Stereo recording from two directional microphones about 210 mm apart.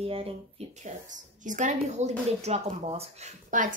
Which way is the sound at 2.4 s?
30° right (ahead or behind).